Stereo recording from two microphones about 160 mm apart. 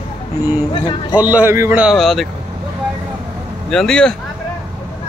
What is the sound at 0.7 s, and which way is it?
Speech, 30° left (ahead or behind).